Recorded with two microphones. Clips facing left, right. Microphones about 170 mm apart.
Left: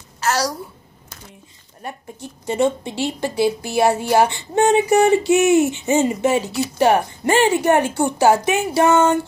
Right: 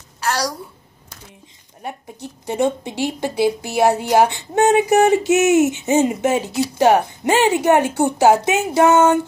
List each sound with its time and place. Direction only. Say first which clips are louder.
0.2 s a child's voice: left 1 dB; 5° left (ahead or behind)
1.8 s speech: right 1 dB; 15° right (ahead or behind)